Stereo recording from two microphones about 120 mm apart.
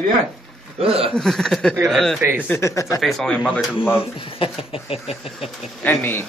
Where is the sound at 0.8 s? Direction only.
55° right (ahead or behind).